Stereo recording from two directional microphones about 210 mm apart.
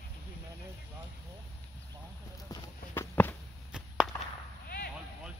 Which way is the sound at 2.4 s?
15° left (ahead or behind).